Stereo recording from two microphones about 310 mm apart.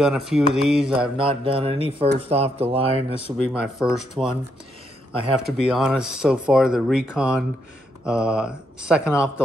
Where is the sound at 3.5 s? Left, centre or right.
Centre.